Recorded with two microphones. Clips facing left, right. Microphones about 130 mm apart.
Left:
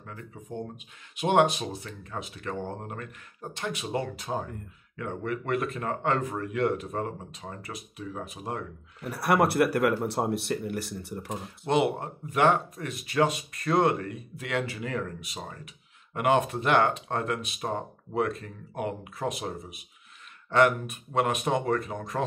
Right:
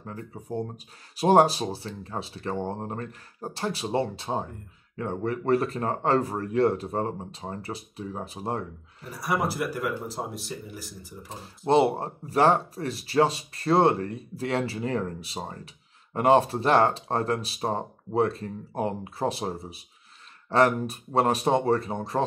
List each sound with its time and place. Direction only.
0.0 s speech: 35° right (ahead or behind)
9.1 s speech: 65° left (ahead or behind)
11.3 s speech: 30° right (ahead or behind)